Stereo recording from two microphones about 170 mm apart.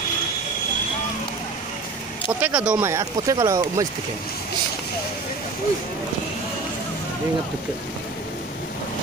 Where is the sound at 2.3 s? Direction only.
10° right (ahead or behind).